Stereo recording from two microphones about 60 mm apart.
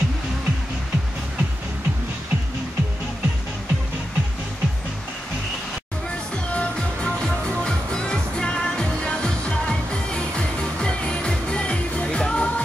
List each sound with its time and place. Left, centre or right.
6.5 s music: centre